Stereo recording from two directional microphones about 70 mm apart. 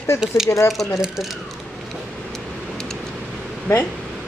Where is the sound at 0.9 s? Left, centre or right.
Centre.